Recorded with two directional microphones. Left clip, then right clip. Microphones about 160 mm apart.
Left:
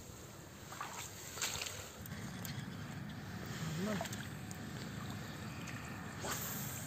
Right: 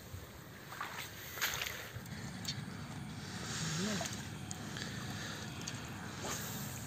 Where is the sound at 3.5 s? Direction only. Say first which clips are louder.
Right 2 dB; centre (ahead or behind).